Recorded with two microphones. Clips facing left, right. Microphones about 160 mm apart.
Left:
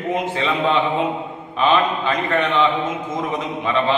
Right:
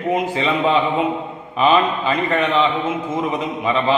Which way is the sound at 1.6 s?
10° right (ahead or behind).